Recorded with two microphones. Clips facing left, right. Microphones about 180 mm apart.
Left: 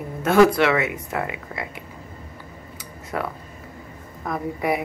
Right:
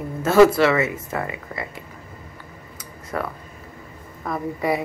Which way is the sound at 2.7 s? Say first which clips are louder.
Even; centre (ahead or behind).